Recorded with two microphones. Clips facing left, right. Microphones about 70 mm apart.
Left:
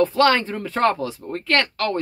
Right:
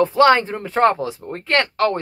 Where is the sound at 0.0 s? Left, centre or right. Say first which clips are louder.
Right 3 dB; centre.